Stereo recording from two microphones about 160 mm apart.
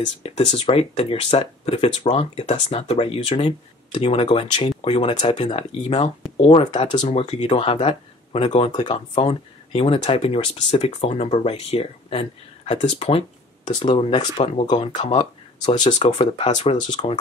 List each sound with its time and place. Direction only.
0.2 s speech: 40° left (ahead or behind)